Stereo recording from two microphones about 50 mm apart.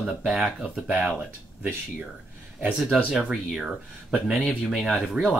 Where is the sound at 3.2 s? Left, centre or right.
Centre.